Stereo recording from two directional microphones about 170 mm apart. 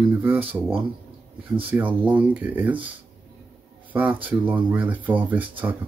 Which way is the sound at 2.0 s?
10° right (ahead or behind).